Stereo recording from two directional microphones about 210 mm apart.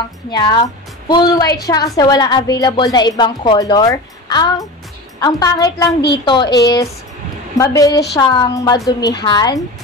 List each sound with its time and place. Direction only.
0.3 s a woman's voice: 20° left (ahead or behind)